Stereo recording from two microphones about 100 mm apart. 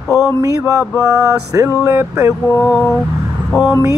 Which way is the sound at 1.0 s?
30° right (ahead or behind).